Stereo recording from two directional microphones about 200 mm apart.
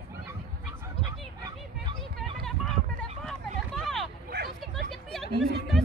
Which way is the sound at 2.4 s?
Centre (ahead or behind).